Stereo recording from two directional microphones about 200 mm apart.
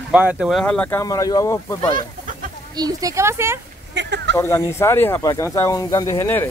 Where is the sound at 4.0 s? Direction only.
60° right (ahead or behind).